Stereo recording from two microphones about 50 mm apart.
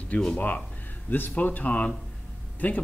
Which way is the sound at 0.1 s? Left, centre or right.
Left.